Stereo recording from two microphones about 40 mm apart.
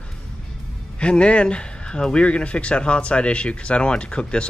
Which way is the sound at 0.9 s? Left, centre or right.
Left.